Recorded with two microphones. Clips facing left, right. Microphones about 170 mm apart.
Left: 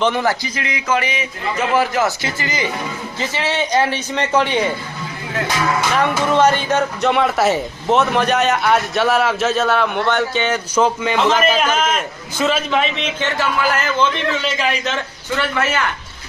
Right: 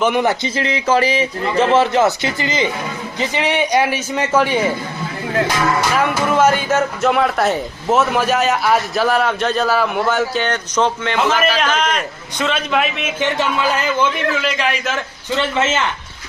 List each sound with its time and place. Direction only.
0.0 s a man's voice: 15° right (ahead or behind)
5.9 s speech: 5° right (ahead or behind)
13.4 s a man's voice: 20° right (ahead or behind)
14.3 s speech: centre (ahead or behind)
15.3 s a man's voice: 20° right (ahead or behind)